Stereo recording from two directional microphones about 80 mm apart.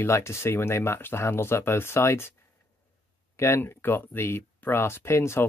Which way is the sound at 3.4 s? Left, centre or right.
Left.